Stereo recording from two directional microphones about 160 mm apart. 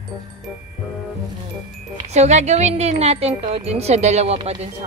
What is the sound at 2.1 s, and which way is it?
Speech, 45° right (ahead or behind).